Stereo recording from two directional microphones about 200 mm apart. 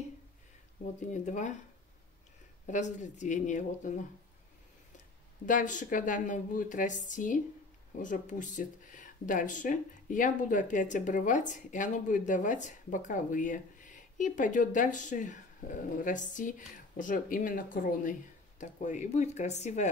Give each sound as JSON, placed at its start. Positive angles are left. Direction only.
{"t": 1.1, "sound": "speech", "side_deg": 40}
{"t": 2.6, "sound": "speech", "side_deg": 40}
{"t": 5.5, "sound": "speech", "side_deg": 40}